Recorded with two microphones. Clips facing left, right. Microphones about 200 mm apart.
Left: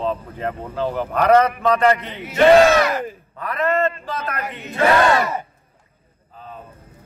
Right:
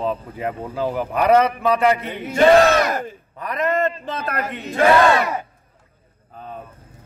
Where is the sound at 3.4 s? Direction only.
15° right (ahead or behind).